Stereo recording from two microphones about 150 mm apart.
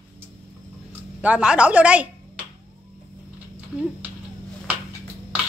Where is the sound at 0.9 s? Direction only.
10° right (ahead or behind).